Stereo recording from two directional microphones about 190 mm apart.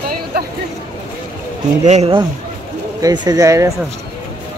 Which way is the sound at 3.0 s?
20° right (ahead or behind).